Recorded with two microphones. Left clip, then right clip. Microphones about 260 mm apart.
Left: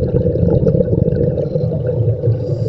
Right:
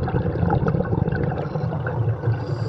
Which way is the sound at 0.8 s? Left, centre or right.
Right.